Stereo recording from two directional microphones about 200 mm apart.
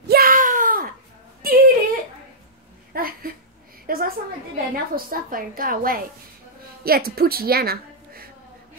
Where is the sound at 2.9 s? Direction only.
45° right (ahead or behind).